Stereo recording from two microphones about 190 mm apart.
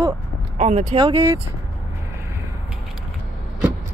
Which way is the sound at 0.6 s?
35° right (ahead or behind).